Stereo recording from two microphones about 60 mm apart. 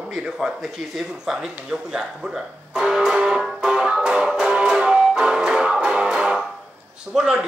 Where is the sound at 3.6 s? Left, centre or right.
Centre.